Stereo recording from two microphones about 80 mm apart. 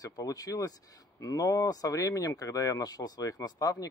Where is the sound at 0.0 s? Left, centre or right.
Left.